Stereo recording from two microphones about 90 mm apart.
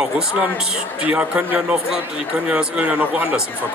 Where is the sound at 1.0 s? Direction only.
15° right (ahead or behind).